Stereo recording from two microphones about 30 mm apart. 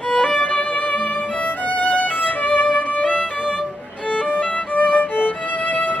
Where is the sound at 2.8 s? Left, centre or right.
Left.